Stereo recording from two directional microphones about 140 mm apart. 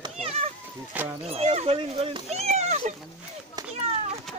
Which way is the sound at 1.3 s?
45° right (ahead or behind).